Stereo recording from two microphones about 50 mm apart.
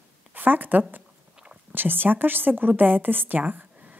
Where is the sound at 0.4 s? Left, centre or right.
Right.